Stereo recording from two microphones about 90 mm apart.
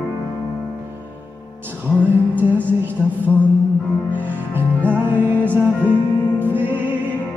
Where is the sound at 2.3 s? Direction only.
20° right (ahead or behind).